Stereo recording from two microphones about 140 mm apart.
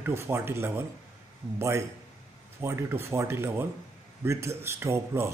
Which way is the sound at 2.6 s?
15° right (ahead or behind).